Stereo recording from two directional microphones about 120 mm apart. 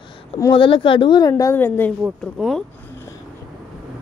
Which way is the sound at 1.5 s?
15° left (ahead or behind).